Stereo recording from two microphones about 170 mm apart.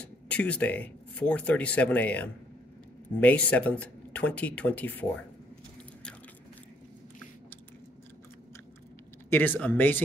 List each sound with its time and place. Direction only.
0.0 s speech: 10° left (ahead or behind)
9.3 s speech: 10° left (ahead or behind)